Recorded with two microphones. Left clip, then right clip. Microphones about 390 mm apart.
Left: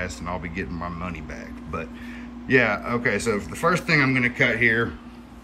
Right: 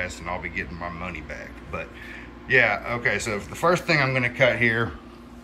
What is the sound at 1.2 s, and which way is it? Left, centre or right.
Speech, centre.